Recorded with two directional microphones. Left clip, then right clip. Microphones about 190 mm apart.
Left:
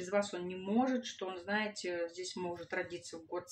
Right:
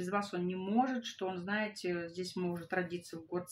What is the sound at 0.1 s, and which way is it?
Speech, 35° right (ahead or behind).